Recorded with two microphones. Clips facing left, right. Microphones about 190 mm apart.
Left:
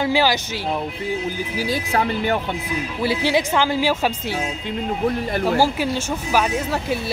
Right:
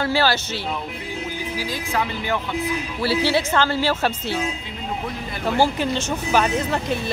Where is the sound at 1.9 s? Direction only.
45° left (ahead or behind).